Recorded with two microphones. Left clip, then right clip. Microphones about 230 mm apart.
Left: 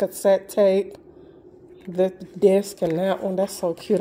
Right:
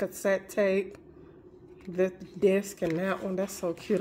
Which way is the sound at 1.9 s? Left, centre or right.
Centre.